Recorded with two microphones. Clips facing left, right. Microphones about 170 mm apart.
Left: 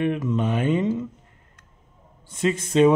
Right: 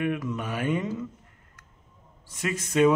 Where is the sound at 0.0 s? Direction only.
25° left (ahead or behind).